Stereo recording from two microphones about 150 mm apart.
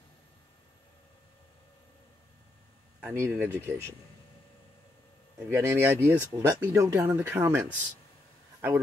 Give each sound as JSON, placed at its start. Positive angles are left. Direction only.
{"t": 3.0, "sound": "speech", "side_deg": -10}
{"t": 5.5, "sound": "a man's voice", "side_deg": -15}